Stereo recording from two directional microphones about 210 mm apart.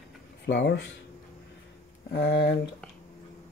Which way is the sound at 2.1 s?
55° left (ahead or behind).